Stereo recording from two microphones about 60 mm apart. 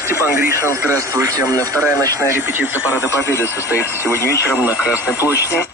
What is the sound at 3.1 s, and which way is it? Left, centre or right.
Speech, left.